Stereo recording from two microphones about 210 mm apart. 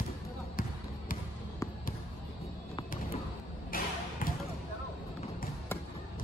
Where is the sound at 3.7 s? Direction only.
40° left (ahead or behind).